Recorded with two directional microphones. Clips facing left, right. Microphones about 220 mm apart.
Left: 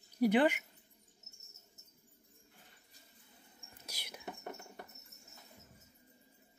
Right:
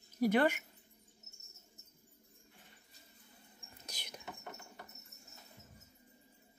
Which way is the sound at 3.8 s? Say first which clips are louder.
Even; 10° left (ahead or behind).